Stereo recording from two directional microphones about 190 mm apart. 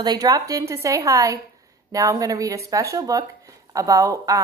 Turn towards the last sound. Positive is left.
turn(degrees=-15)  # may be behind; listen again after turning